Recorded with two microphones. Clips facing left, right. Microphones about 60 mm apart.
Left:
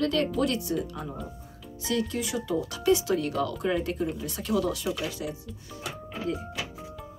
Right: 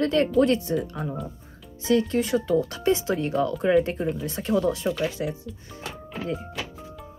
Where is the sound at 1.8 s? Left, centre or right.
Right.